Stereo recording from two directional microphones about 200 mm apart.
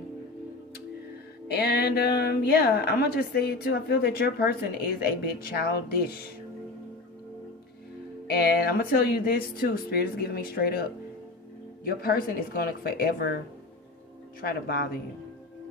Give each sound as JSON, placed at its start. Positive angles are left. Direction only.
{"t": 1.5, "sound": "a woman's voice", "side_deg": 55}
{"t": 8.3, "sound": "a woman's voice", "side_deg": 50}
{"t": 14.4, "sound": "a woman's voice", "side_deg": 50}